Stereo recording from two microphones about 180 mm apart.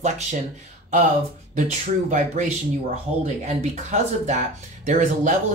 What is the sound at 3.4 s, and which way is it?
Speech, 35° right (ahead or behind).